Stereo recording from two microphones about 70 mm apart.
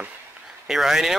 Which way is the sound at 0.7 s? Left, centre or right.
Centre.